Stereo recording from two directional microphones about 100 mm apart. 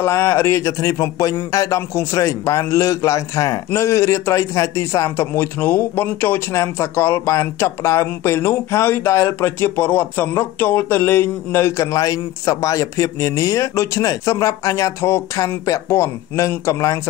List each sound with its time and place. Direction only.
0.0 s a man's voice: 25° left (ahead or behind)